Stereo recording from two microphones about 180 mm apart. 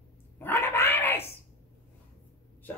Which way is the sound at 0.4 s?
10° left (ahead or behind).